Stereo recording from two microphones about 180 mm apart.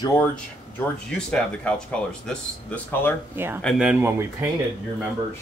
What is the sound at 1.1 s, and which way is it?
Speech, 5° left (ahead or behind).